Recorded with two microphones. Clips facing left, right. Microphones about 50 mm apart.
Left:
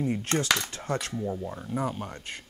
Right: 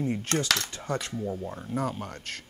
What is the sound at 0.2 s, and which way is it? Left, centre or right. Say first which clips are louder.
Cutlery: left 1 dB; left.